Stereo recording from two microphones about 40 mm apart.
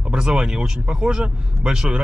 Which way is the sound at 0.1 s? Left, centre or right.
Right.